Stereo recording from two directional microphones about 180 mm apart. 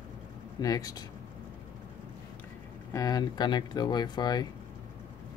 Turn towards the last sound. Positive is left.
turn(degrees=20)  # may be behind; listen again after turning